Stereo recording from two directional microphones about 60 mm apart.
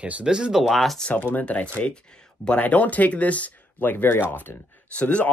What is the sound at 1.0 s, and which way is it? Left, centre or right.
Speech, left.